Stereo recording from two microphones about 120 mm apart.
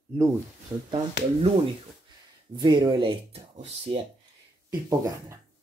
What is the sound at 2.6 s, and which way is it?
Speech, 40° right (ahead or behind).